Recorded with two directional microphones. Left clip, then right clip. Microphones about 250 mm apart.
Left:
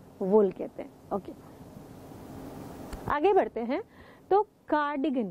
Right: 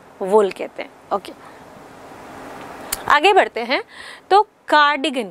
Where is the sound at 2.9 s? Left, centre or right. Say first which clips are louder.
Right 12 dB; centre.